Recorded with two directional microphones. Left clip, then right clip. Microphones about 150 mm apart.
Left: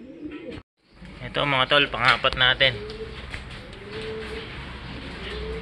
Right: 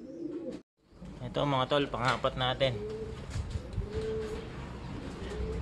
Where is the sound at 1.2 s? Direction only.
25° right (ahead or behind).